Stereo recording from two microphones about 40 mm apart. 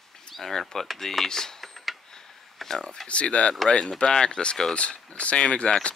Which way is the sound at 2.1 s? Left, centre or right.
Centre.